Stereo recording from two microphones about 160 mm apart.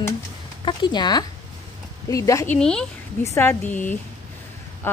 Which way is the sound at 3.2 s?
15° left (ahead or behind).